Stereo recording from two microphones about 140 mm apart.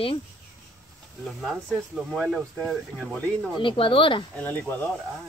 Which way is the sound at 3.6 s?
40° left (ahead or behind).